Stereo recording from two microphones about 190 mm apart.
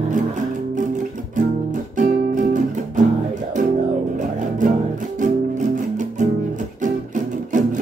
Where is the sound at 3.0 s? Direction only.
40° right (ahead or behind).